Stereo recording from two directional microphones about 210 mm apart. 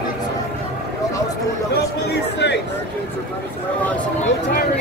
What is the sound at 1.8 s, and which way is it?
Speech, 50° left (ahead or behind).